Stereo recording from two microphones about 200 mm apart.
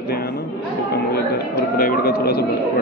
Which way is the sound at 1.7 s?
50° left (ahead or behind).